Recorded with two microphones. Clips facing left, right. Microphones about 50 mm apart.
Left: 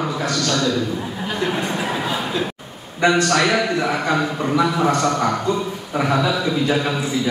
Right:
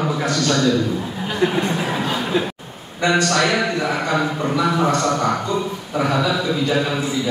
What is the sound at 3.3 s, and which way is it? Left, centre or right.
Speech, centre.